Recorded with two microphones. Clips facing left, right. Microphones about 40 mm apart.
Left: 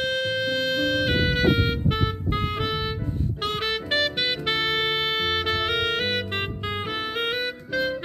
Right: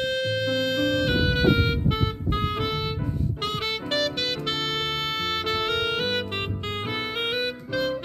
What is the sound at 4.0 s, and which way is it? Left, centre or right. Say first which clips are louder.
Music: left 1 dB; centre.